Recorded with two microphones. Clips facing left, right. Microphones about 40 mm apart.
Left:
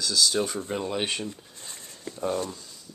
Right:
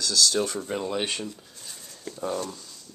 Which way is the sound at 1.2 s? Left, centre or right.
Left.